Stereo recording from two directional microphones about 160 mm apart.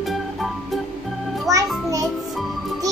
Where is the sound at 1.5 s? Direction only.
20° right (ahead or behind).